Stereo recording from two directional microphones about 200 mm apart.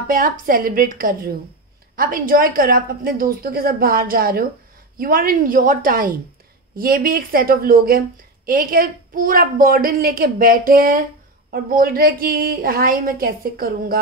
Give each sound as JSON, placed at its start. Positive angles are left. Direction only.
{"t": 0.1, "sound": "a woman's voice", "side_deg": -45}